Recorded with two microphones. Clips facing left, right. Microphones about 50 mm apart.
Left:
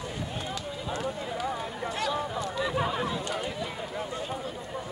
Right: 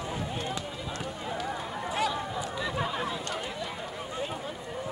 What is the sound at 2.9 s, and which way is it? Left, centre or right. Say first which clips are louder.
Chatter: left 2 dB; centre.